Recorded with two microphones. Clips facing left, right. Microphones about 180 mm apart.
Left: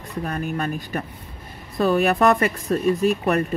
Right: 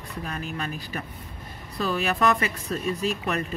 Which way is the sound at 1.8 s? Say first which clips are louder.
Left 7 dB; 55° left (ahead or behind).